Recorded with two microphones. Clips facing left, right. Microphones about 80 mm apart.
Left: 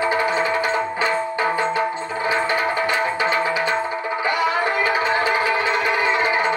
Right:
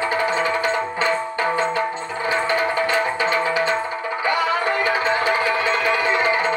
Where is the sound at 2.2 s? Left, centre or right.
Centre.